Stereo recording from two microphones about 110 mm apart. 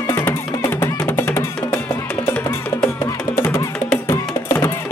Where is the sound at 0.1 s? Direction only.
25° left (ahead or behind).